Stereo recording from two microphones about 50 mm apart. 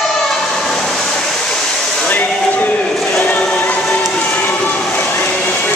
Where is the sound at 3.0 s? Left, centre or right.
Centre.